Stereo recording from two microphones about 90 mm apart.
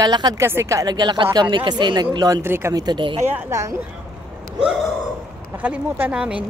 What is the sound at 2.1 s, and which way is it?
Speech, 45° right (ahead or behind).